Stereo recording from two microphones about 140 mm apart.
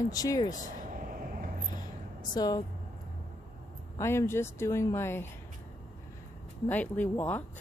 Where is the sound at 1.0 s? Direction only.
90° right.